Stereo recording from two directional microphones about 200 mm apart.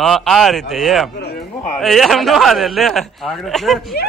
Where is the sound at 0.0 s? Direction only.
Centre (ahead or behind).